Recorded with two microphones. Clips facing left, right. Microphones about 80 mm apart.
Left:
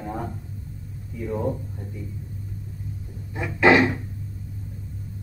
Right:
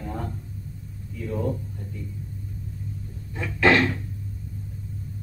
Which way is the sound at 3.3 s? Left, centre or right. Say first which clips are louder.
Left 3 dB; centre.